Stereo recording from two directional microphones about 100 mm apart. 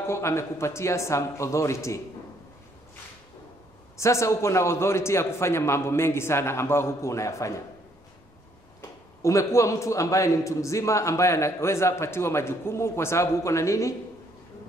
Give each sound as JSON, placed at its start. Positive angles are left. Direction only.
{"t": 0.1, "sound": "a man's voice", "side_deg": 25}
{"t": 4.0, "sound": "a man's voice", "side_deg": 30}
{"t": 9.2, "sound": "a man's voice", "side_deg": 30}